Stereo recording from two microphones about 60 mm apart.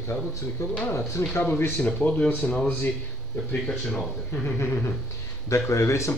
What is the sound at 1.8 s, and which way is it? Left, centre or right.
Speech, left.